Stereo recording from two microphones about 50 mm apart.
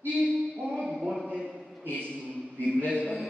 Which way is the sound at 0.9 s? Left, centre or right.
Centre.